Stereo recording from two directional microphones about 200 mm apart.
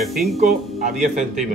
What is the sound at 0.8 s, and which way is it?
Speech, 40° right (ahead or behind).